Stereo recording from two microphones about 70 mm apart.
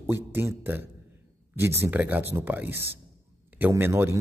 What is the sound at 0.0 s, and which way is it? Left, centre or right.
Speech, right.